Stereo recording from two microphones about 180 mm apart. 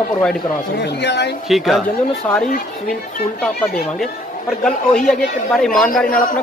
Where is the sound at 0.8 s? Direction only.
70° left (ahead or behind).